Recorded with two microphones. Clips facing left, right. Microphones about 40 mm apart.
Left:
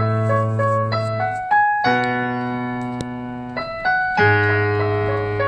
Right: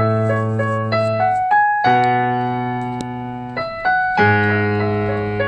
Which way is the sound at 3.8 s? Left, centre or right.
Right.